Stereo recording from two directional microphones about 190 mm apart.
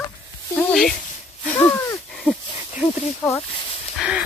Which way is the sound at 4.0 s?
5° right (ahead or behind).